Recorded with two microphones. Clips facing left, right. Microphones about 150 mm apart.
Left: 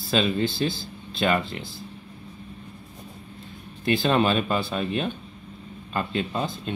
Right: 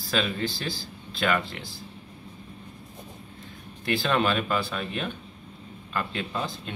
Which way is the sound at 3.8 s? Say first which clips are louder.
Left 3 dB; 20° left (ahead or behind).